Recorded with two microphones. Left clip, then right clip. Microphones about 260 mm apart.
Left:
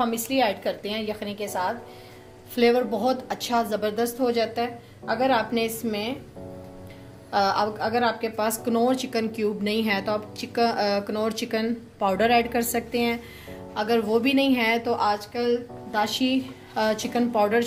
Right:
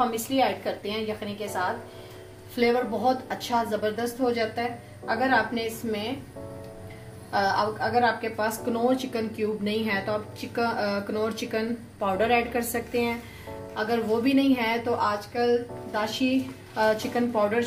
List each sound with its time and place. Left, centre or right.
0.0 s a woman's voice: left
7.2 s a woman's voice: left